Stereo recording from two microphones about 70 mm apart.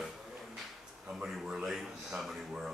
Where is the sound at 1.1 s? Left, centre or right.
Centre.